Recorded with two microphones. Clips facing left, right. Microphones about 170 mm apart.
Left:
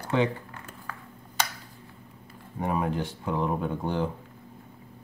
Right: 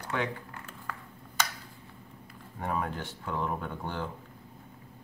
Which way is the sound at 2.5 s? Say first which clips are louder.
Left 5 dB; 15° left (ahead or behind).